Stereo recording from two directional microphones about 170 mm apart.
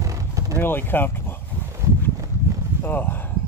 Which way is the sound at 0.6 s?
10° left (ahead or behind).